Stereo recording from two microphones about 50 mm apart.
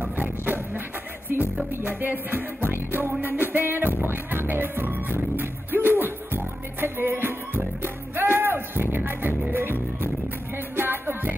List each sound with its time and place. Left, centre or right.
0.0 s music: right
1.9 s music: right